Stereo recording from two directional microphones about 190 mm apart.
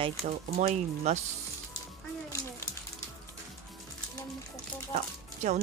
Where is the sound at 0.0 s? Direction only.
30° right (ahead or behind).